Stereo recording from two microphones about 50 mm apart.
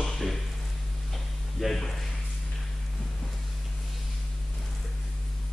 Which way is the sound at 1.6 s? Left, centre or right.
Centre.